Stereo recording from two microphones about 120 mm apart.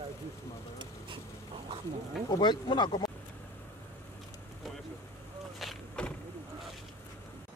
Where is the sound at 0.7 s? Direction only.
45° right (ahead or behind).